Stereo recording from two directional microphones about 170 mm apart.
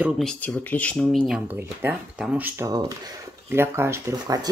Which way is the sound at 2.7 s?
20° right (ahead or behind).